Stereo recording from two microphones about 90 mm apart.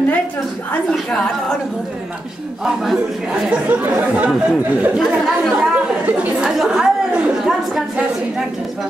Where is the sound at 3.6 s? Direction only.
20° right (ahead or behind).